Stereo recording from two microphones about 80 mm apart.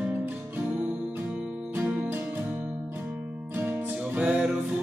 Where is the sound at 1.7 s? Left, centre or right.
Right.